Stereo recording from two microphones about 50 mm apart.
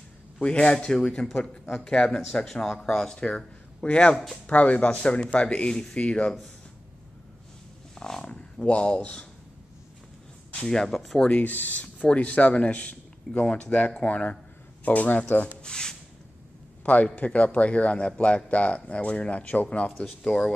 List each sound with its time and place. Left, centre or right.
0.4 s speech: left
7.9 s speech: centre
10.5 s speech: centre
11.2 s speech: left
15.6 s speech: centre
16.8 s speech: left